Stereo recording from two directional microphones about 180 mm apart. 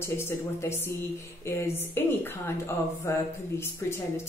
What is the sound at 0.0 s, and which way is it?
Speech, 15° left (ahead or behind).